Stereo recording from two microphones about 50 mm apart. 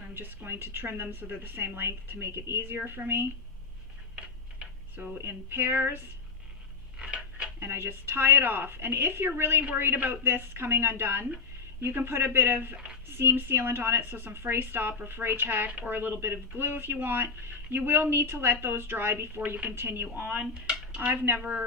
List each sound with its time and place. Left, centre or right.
0.1 s a woman's voice: right
2.6 s speech: right
4.1 s tick-tock: right
5.2 s speech: right
7.2 s a sound: centre
7.6 s speech: right
20.2 s dishes: right
20.6 s dishes: centre